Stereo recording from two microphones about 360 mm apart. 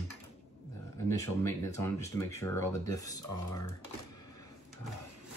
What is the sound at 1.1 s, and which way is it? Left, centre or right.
Speech, centre.